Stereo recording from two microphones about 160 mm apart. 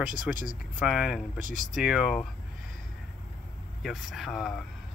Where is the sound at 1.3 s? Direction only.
55° right (ahead or behind).